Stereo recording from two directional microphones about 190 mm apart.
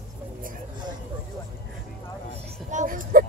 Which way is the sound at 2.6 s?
45° right (ahead or behind).